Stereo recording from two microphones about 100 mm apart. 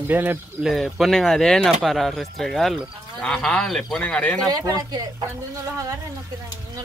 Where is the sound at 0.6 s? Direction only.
Centre (ahead or behind).